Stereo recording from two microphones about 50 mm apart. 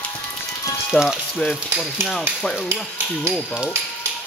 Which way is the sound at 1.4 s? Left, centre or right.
Left.